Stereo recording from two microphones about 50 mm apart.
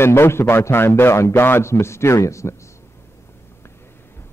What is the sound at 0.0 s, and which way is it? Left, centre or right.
A man's voice, left.